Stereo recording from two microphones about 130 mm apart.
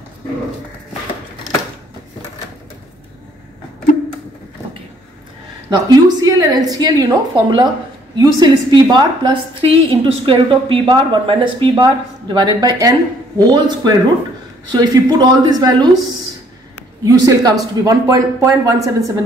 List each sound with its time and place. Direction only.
5.7 s a woman's voice: 30° right (ahead or behind)
17.0 s speech: 30° right (ahead or behind)